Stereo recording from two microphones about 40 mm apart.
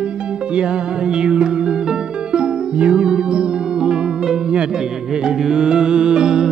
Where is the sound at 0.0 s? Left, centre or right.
Right.